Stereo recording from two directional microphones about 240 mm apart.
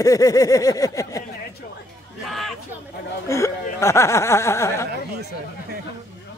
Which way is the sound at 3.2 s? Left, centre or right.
Centre.